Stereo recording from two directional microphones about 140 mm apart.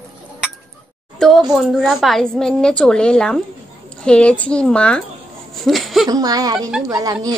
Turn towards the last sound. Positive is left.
turn(degrees=-25)  # may be behind; listen again after turning